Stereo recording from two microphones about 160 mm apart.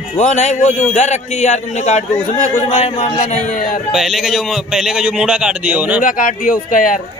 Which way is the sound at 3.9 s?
Centre (ahead or behind).